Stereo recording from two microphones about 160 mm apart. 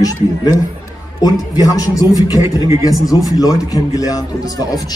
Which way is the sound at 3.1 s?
30° left (ahead or behind).